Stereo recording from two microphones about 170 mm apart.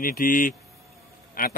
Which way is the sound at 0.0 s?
55° left (ahead or behind).